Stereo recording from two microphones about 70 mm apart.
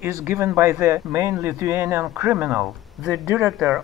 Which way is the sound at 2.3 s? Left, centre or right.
Centre.